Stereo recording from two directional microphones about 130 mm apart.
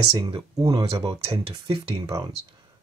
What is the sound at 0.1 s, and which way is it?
Speech, 40° right (ahead or behind).